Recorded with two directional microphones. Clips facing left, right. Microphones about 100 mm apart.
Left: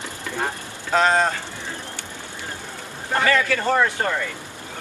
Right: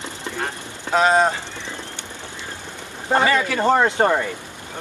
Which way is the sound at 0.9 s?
10° right (ahead or behind).